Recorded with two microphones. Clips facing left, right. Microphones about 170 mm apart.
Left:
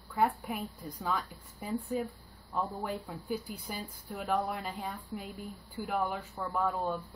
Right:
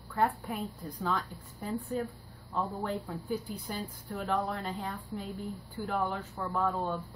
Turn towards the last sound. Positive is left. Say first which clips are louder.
# right 1 dB
turn(degrees=10)  # may be behind; listen again after turning